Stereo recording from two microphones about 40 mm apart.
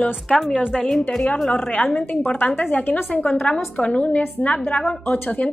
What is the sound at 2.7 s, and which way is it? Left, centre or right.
Speech, left.